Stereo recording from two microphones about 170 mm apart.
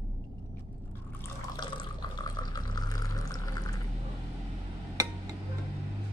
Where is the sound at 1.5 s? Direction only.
25° left (ahead or behind).